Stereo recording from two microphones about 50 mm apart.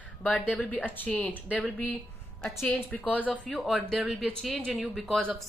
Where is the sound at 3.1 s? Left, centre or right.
Left.